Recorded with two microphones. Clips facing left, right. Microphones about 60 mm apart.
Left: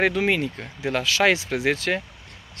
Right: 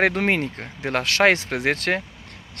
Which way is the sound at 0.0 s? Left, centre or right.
Right.